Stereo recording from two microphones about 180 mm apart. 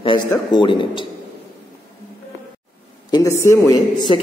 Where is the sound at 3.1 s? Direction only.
15° left (ahead or behind).